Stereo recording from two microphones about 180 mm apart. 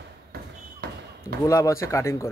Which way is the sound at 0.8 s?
55° right (ahead or behind).